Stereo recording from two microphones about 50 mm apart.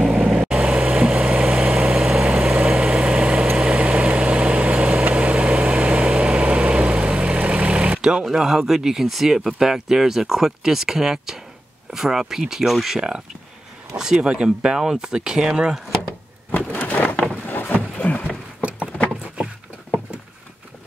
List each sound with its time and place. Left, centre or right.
0.2 s vehicle: centre
0.6 s vehicle: right
8.4 s speech: centre
16.5 s a sound: left